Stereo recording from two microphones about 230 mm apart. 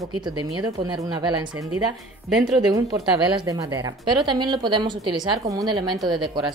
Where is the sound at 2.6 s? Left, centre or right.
Centre.